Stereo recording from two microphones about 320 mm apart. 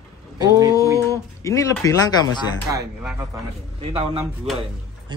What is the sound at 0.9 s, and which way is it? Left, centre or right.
Speech, centre.